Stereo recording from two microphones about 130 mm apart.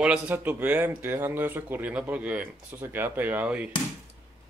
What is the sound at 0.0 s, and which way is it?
Speech, 10° right (ahead or behind).